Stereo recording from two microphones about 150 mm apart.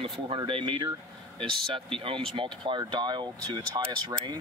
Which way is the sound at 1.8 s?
35° right (ahead or behind).